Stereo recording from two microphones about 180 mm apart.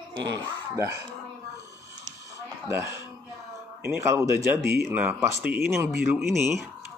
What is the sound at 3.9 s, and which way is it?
Speech, 15° right (ahead or behind).